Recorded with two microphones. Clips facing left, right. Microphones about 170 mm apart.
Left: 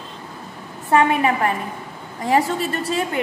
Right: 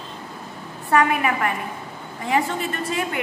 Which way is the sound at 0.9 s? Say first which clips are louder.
Left 3 dB; 25° left (ahead or behind).